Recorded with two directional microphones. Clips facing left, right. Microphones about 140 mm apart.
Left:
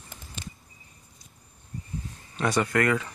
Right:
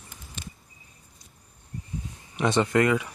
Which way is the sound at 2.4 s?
20° right (ahead or behind).